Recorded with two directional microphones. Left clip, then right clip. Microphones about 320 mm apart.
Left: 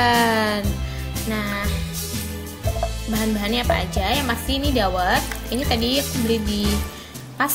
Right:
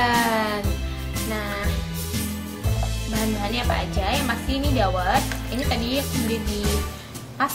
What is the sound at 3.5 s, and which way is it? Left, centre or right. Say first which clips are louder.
Speech: left 4 dB; left.